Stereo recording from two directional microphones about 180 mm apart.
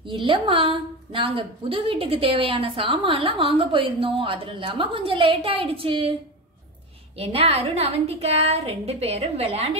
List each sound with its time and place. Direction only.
0.0 s a woman's voice: 25° right (ahead or behind)
7.2 s a woman's voice: 35° right (ahead or behind)